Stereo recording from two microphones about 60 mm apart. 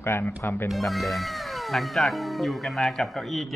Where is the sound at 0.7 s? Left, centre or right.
Centre.